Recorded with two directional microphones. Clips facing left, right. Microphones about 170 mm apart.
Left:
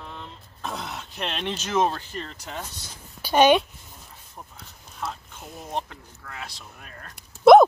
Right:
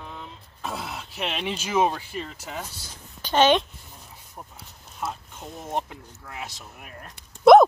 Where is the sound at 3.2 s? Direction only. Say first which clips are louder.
Left 2 dB; 10° left (ahead or behind).